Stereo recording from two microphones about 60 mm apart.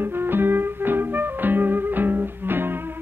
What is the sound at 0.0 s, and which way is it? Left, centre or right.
Music, right.